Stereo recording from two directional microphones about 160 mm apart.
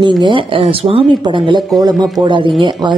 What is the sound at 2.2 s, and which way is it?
Speech, 30° right (ahead or behind).